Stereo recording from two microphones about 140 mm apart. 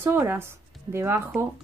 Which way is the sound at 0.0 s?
15° right (ahead or behind).